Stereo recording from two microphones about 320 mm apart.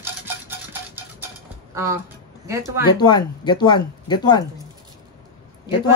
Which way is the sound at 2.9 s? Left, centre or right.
Centre.